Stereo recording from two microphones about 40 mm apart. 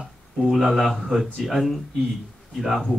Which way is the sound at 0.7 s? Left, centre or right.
Centre.